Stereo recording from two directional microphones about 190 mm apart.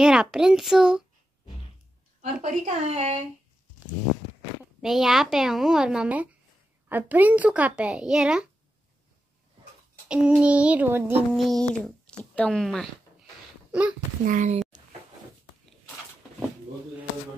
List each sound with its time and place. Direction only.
0.0 s a woman's voice: 5° right (ahead or behind)
2.4 s a woman's voice: 35° right (ahead or behind)
4.8 s a woman's voice: centre (ahead or behind)
10.0 s a child's voice: 5° right (ahead or behind)
11.3 s a child's voice: centre (ahead or behind)
14.2 s speech: 40° right (ahead or behind)